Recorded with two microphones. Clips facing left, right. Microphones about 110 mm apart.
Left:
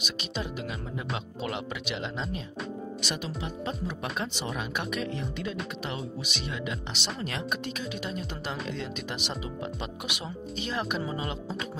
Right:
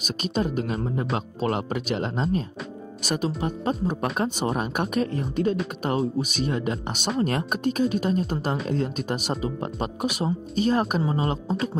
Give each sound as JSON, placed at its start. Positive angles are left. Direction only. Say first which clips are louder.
{"t": 0.0, "sound": "speech", "louder": "right 9 dB", "side_deg": -45}